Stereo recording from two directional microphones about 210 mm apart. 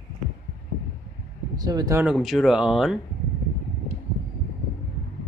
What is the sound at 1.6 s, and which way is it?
Speech, 20° right (ahead or behind).